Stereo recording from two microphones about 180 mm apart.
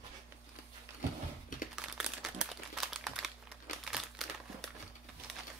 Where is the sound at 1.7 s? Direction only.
5° right (ahead or behind).